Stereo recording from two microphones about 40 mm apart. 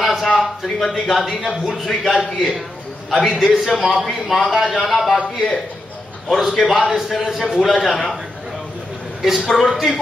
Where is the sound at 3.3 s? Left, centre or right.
Centre.